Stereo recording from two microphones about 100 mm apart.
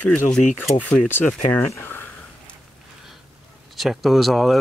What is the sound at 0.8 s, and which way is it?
Speech, 15° left (ahead or behind).